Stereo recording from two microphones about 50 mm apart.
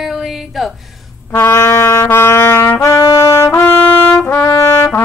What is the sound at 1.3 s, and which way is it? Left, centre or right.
Brass instrument, left.